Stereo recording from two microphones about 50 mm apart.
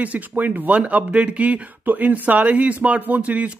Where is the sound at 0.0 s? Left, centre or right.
Right.